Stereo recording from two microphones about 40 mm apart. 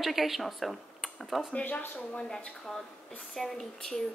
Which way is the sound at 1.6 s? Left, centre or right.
Left.